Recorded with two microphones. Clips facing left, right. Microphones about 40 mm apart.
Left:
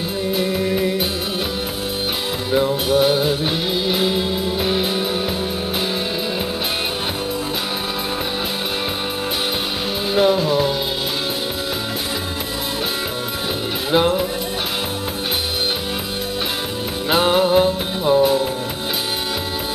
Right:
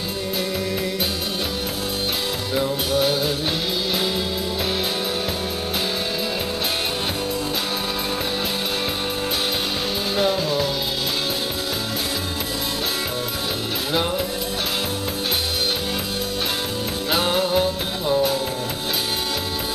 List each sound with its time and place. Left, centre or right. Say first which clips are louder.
0.4 s music: left 6 dB; centre
2.5 s music: left 6 dB; centre
10.1 s music: left 6 dB; centre
13.9 s music: left 7 dB; centre
17.1 s music: left 6 dB; centre